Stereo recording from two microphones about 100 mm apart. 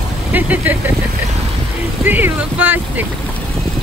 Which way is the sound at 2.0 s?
20° right (ahead or behind).